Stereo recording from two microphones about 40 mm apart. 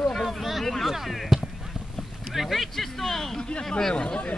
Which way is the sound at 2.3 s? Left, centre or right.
Centre.